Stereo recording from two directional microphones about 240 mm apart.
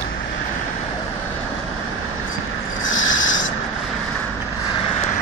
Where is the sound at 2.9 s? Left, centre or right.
Left.